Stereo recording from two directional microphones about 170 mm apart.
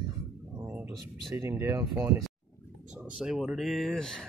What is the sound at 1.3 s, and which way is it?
Speech, 15° right (ahead or behind).